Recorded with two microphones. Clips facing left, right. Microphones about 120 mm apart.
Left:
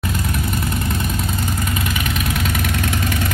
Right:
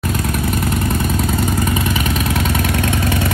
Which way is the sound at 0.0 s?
50° right (ahead or behind).